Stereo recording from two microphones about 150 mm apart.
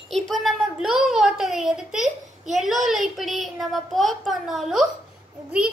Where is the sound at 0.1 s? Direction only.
Centre (ahead or behind).